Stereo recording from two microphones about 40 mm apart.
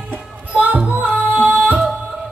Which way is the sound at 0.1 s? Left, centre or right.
Right.